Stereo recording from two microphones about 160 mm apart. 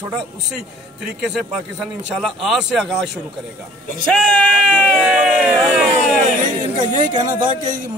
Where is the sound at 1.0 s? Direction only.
5° right (ahead or behind).